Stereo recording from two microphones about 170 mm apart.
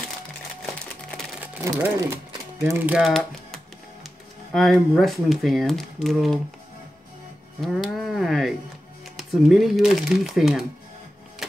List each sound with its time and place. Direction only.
1.4 s speech: 15° right (ahead or behind)
7.6 s speech: centre (ahead or behind)